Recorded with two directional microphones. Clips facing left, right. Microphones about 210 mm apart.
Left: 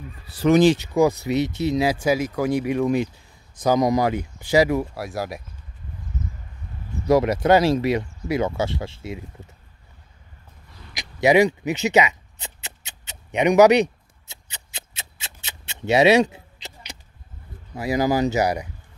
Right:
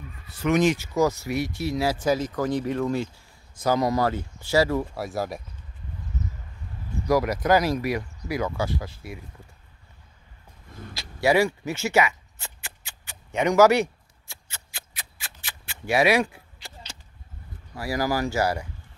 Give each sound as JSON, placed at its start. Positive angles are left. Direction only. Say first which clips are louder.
{"t": 0.3, "sound": "speech", "louder": "left 6 dB", "side_deg": 35}
{"t": 0.7, "sound": "speech", "louder": "left 4 dB", "side_deg": 15}
{"t": 4.9, "sound": "speech", "louder": "even", "side_deg": 0}
{"t": 7.1, "sound": "speech", "louder": "left 4 dB", "side_deg": 25}
{"t": 10.9, "sound": "zipper", "louder": "left 4 dB", "side_deg": 20}
{"t": 17.7, "sound": "speech", "louder": "left 5 dB", "side_deg": 20}